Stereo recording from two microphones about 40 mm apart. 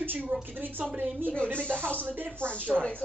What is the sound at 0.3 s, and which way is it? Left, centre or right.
Speech, right.